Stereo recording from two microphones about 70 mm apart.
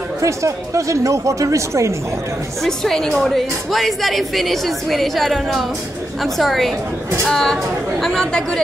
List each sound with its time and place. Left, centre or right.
0.2 s speech: right
2.6 s a woman's voice: centre